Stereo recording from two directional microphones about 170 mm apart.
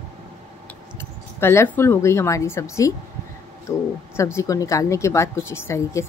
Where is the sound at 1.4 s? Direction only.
15° left (ahead or behind).